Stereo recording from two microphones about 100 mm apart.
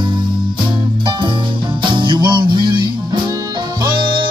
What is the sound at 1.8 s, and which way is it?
Music, 55° right (ahead or behind).